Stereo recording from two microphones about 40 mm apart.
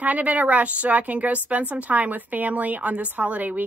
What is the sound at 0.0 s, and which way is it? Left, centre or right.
A woman's voice, right.